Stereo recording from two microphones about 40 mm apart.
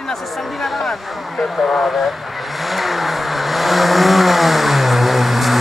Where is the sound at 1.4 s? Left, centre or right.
Centre.